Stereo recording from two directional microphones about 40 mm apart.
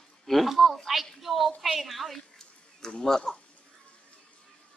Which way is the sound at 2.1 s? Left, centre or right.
Centre.